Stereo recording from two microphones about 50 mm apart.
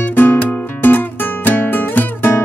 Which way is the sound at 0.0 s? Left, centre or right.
Left.